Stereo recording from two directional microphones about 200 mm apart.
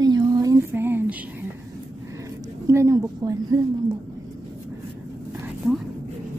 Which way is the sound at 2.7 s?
15° right (ahead or behind).